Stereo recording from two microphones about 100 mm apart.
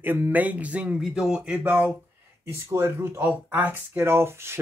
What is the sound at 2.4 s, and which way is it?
Speech, 25° right (ahead or behind).